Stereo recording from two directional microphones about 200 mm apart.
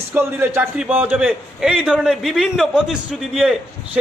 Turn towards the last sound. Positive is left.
turn(degrees=0)  # may be behind; listen again after turning